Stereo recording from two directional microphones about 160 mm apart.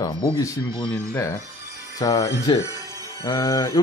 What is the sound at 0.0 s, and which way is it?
Speech, 25° left (ahead or behind).